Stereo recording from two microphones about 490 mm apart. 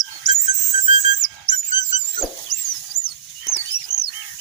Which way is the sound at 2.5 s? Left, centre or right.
Left.